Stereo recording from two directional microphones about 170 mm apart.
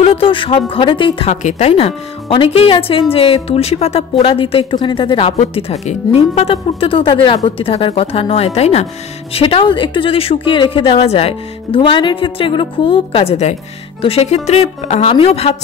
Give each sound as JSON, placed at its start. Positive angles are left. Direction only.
{"t": 0.0, "sound": "speech", "side_deg": 35}
{"t": 1.3, "sound": "speech", "side_deg": 45}